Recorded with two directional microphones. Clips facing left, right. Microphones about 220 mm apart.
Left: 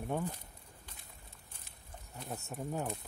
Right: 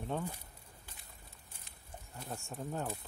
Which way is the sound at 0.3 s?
10° right (ahead or behind).